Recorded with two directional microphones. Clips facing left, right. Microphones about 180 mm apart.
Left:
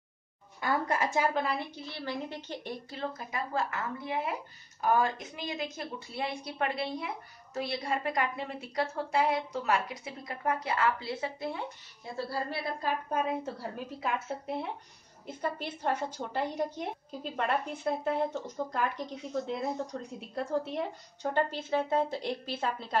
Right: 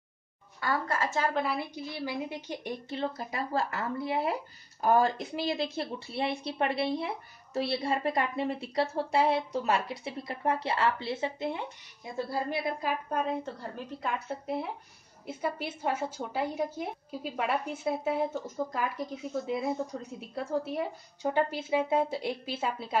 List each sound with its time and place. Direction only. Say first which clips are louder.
0.6 s a woman's voice: left 1 dB; 20° left (ahead or behind)
1.3 s a woman's voice: right 1 dB; 5° right (ahead or behind)
2.9 s a woman's voice: right 4 dB; 30° right (ahead or behind)
13.1 s a woman's voice: even; 5° left (ahead or behind)